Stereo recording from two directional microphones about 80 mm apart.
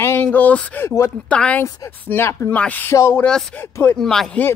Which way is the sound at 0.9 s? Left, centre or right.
Left.